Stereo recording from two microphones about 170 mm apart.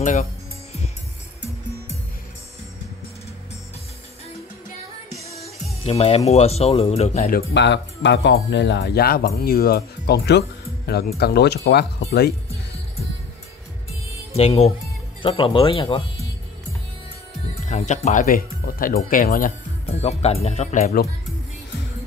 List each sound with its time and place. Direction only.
0.0 s speech: 45° left (ahead or behind)
5.3 s speech: 40° left (ahead or behind)
7.2 s speech: 75° left (ahead or behind)
14.3 s speech: 35° left (ahead or behind)
17.6 s speech: 45° left (ahead or behind)